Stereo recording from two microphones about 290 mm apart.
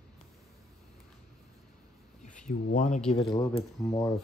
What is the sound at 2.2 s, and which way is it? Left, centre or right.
Speech, left.